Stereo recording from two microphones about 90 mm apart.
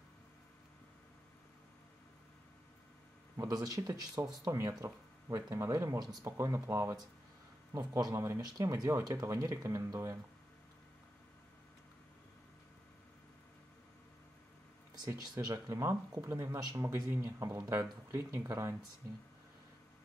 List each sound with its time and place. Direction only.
3.3 s speech: 40° right (ahead or behind)
4.2 s speech: 35° right (ahead or behind)
8.1 s speech: 30° right (ahead or behind)
8.4 s speech: 45° right (ahead or behind)
15.1 s speech: 40° right (ahead or behind)